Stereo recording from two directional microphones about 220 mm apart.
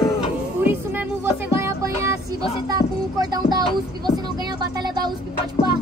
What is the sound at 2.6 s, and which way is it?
Speech, 15° right (ahead or behind).